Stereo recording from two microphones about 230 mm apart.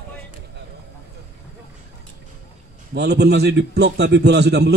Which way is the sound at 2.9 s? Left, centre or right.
Right.